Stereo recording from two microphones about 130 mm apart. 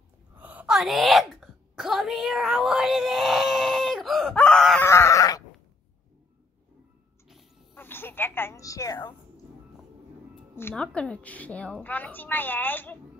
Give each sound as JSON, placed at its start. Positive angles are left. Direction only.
{"t": 0.4, "sound": "a sound", "side_deg": -10}
{"t": 4.8, "sound": "goat", "side_deg": 20}
{"t": 7.7, "sound": "speech", "side_deg": 15}
{"t": 10.7, "sound": "a woman's voice", "side_deg": 5}